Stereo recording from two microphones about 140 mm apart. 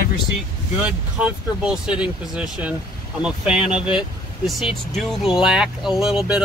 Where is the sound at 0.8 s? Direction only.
5° right (ahead or behind).